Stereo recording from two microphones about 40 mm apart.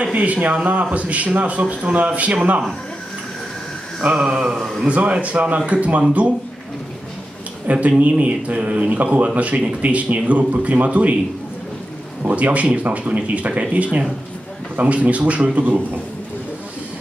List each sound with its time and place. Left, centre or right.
0.1 s speech: right
4.2 s speech: right
7.6 s speech: right
12.2 s speech: right